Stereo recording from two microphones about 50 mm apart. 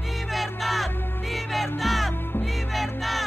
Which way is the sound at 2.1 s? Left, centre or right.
Left.